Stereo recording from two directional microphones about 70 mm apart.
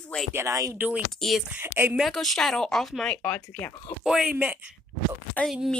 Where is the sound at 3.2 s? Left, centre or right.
Centre.